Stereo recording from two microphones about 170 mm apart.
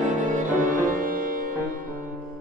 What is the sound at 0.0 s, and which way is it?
Music, 50° right (ahead or behind).